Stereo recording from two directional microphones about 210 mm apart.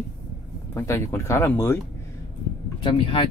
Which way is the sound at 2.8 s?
25° left (ahead or behind).